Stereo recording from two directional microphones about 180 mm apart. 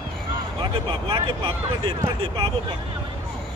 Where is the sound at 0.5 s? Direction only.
30° right (ahead or behind).